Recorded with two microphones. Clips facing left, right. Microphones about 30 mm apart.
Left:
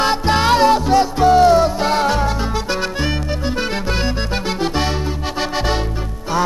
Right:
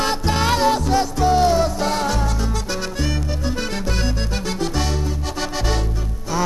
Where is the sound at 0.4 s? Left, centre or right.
Left.